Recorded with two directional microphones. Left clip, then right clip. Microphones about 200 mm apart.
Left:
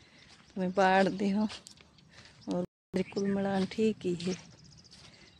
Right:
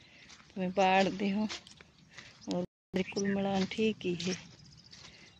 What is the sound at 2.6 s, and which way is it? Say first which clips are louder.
Speech: left 1 dB; centre (ahead or behind).